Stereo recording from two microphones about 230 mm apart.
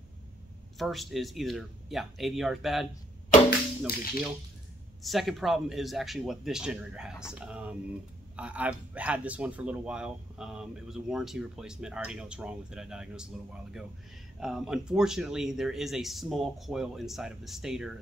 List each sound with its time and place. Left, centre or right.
0.7 s speech: centre
3.4 s a sound: left
5.0 s speech: centre